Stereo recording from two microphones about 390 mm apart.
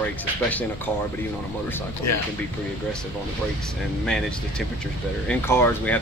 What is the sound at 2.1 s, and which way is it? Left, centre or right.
Speech, left.